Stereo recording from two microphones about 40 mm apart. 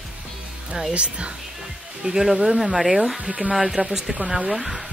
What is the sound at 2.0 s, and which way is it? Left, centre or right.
Speech, centre.